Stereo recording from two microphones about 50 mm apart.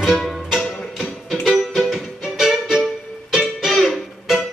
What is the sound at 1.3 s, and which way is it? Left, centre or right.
Music, centre.